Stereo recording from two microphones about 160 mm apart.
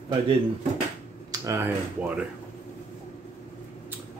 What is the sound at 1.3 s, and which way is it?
Speech, 20° right (ahead or behind).